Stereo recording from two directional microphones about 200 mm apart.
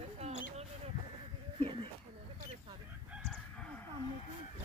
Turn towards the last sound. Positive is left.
turn(degrees=0)  # may be behind; listen again after turning